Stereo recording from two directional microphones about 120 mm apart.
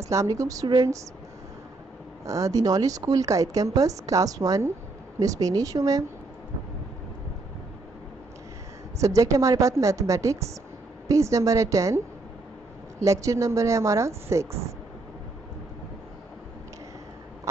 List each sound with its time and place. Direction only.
0.0 s speech: 25° right (ahead or behind)
2.2 s speech: 25° right (ahead or behind)
9.0 s speech: 25° right (ahead or behind)
13.0 s speech: 25° right (ahead or behind)